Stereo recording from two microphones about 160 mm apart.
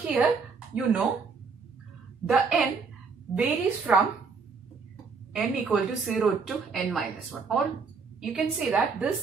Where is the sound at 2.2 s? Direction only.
5° right (ahead or behind).